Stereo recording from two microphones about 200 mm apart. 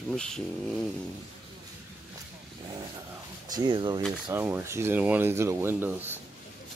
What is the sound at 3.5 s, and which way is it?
Speech, 20° right (ahead or behind).